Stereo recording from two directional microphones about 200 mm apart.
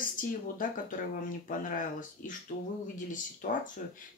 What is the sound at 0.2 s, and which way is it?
Speech, 45° left (ahead or behind).